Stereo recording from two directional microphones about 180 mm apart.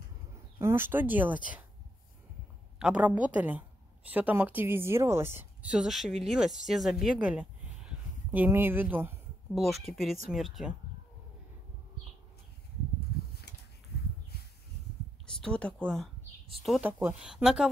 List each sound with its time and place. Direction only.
0.6 s speech: 15° right (ahead or behind)
2.8 s a woman's voice: 5° right (ahead or behind)
9.5 s speech: centre (ahead or behind)
13.5 s a sound: 65° left (ahead or behind)
15.2 s speech: 5° left (ahead or behind)